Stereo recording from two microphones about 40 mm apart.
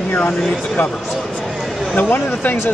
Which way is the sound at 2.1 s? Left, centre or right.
Left.